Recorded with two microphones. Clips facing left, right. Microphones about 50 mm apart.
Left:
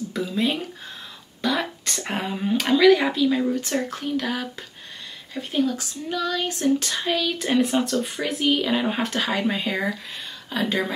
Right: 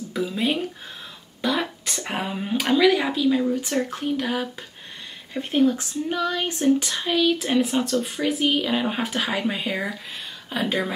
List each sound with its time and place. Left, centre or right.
0.1 s speech: centre
3.9 s speech: centre
5.4 s speech: right
6.8 s speech: centre